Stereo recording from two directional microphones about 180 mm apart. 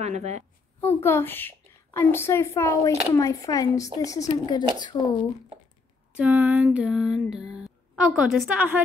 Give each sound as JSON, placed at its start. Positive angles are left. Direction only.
{"t": 0.0, "sound": "a woman's voice", "side_deg": -40}
{"t": 0.7, "sound": "a woman's voice", "side_deg": 10}
{"t": 6.1, "sound": "a sound", "side_deg": -10}